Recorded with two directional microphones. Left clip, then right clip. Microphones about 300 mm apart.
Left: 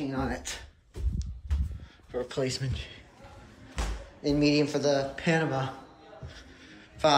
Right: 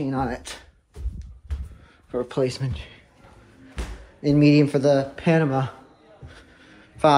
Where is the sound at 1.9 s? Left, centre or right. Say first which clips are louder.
Right 6 dB; centre.